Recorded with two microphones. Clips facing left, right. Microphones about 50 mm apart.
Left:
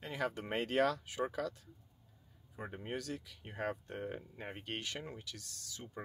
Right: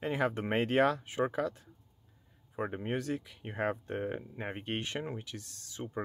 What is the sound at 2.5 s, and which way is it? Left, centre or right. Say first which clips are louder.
Speech: right 8 dB; right.